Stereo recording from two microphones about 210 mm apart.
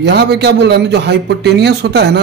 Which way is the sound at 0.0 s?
55° right (ahead or behind).